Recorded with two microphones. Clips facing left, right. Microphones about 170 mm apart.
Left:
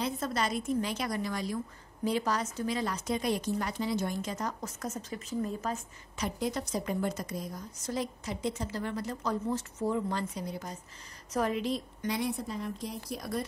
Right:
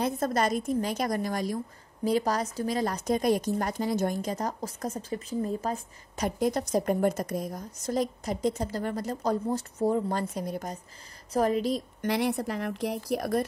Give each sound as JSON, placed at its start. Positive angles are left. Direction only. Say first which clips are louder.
{"t": 0.0, "sound": "a woman's voice", "louder": "right 5 dB", "side_deg": -50}
{"t": 6.2, "sound": "a woman's voice", "louder": "right 6 dB", "side_deg": -45}
{"t": 12.0, "sound": "a woman's voice", "louder": "right 8 dB", "side_deg": -70}